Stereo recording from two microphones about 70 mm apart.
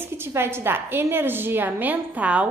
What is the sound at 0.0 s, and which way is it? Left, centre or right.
A woman's voice, right.